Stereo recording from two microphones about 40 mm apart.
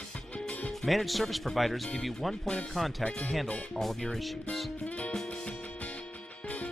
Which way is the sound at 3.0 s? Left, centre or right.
Left.